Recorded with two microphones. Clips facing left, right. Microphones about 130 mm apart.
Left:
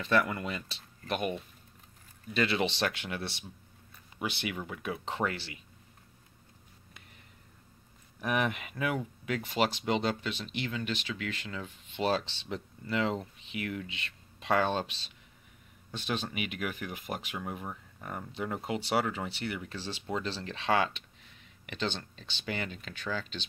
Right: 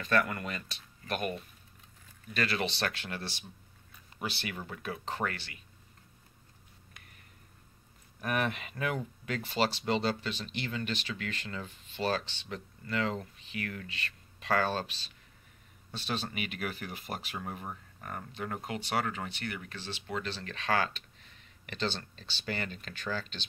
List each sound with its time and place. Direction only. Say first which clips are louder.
0.0 s speech: left 1 dB; 20° left (ahead or behind)
4.2 s speech: left 3 dB; 15° left (ahead or behind)
8.2 s speech: left 1 dB; 15° left (ahead or behind)
11.9 s speech: left 2 dB; 20° left (ahead or behind)
19.1 s speech: left 3 dB; 25° left (ahead or behind); by 23.4 s 10° left (ahead or behind)